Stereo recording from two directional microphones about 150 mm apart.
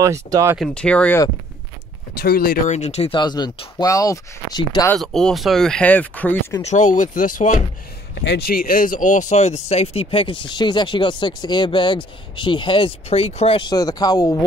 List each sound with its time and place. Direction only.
0.0 s speech: 20° right (ahead or behind)
0.6 s speech: 5° left (ahead or behind)
2.1 s speech: 90° left
2.7 s speech: 50° left (ahead or behind)
3.2 s speech: 30° left (ahead or behind)
4.9 s speech: 5° left (ahead or behind)
6.6 s speech: 55° left (ahead or behind)
8.1 s speech: 85° left; by 14.4 s 25° left (ahead or behind)